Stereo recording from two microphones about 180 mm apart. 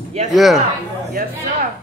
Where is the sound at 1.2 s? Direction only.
55° right (ahead or behind).